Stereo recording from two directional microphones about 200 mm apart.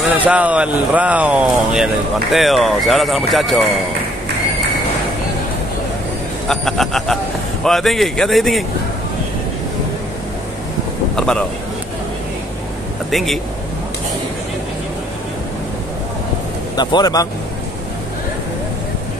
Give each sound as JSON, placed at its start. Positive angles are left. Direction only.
{"t": 0.0, "sound": "speech", "side_deg": -5}
{"t": 6.5, "sound": "speech", "side_deg": 0}
{"t": 11.1, "sound": "speech", "side_deg": 5}
{"t": 13.1, "sound": "speech", "side_deg": 0}
{"t": 16.7, "sound": "speech", "side_deg": 20}